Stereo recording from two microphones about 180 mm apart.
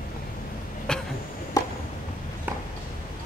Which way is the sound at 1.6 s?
20° left (ahead or behind).